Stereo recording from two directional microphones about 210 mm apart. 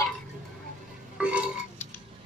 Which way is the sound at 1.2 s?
5° right (ahead or behind).